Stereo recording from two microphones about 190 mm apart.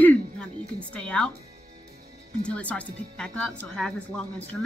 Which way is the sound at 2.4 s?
5° left (ahead or behind).